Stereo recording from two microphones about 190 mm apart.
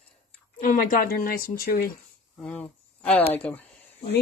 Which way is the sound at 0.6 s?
45° left (ahead or behind).